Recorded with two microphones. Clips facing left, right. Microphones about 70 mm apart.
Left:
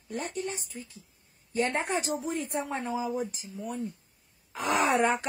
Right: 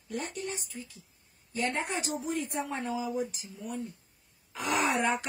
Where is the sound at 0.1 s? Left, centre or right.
Left.